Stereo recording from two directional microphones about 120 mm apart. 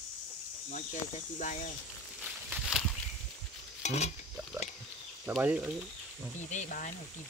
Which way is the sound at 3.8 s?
70° left (ahead or behind).